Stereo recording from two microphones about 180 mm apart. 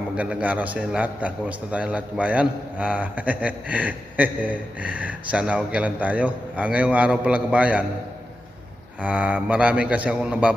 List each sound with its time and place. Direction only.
0.1 s a man's voice: 5° right (ahead or behind)
9.0 s a man's voice: 5° right (ahead or behind)